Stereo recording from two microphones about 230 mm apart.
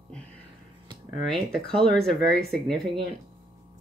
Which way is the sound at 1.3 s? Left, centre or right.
Centre.